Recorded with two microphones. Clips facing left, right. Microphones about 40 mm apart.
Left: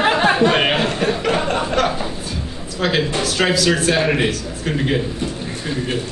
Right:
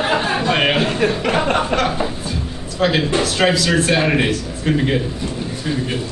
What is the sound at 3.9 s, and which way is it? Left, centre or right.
Speech, centre.